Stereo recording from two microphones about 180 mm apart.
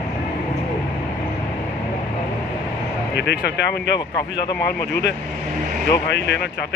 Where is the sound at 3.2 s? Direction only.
70° left (ahead or behind).